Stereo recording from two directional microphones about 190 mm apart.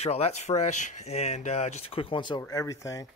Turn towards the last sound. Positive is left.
turn(degrees=15)  # may be behind; listen again after turning